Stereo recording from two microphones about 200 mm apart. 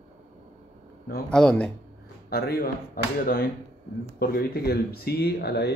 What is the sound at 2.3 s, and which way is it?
Speech, 50° left (ahead or behind).